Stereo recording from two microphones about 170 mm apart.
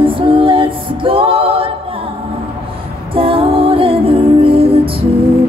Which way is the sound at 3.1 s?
30° right (ahead or behind).